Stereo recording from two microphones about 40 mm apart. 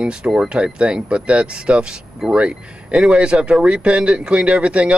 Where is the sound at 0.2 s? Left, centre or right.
Right.